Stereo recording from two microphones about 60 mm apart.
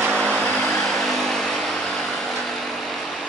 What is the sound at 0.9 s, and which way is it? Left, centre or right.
Vehicle, centre.